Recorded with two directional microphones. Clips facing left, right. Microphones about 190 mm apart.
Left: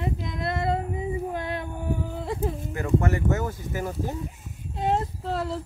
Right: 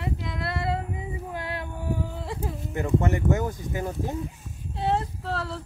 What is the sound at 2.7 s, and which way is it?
Speech, 20° right (ahead or behind).